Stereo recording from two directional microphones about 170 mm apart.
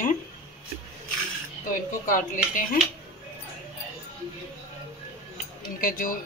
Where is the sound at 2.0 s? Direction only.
55° left (ahead or behind).